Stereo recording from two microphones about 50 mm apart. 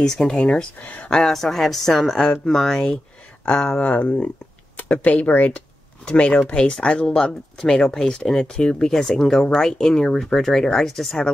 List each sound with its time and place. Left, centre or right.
0.0 s speech: centre
0.7 s speech: left
1.1 s speech: centre
3.8 s speech: left
6.0 s speech: left; by 11.1 s centre